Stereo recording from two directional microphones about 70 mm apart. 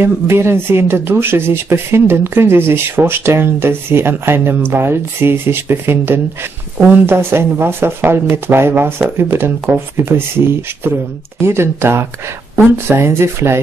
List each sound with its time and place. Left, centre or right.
0.0 s speech: right
6.8 s speech: right
11.4 s speech: right